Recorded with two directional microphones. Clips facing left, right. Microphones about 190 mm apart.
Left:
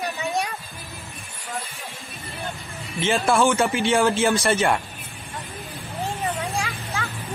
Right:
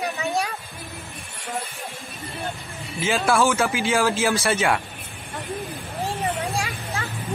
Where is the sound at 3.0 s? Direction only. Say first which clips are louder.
Left 1 dB; centre (ahead or behind).